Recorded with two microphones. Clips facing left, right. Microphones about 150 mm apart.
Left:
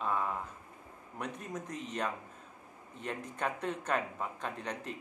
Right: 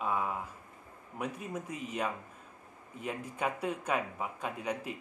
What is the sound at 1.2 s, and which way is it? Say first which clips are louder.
Speech: right 2 dB; 5° right (ahead or behind).